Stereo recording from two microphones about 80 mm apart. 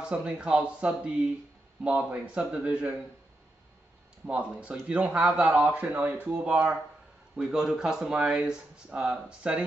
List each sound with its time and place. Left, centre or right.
0.0 s speech: centre
4.3 s speech: centre